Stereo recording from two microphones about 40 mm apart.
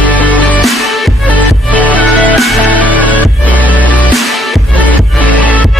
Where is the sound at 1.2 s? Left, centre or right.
Left.